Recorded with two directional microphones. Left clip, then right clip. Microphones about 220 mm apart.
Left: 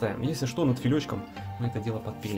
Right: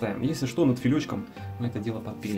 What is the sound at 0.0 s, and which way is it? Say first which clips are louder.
Speech: right 1 dB; 20° left (ahead or behind).